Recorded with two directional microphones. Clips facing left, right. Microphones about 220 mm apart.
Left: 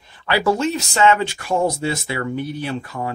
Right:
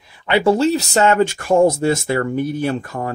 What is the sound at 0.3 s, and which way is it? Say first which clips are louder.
Speech: right 4 dB; 25° right (ahead or behind).